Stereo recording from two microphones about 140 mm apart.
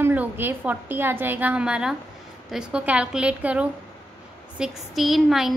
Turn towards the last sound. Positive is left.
turn(degrees=0)  # may be behind; listen again after turning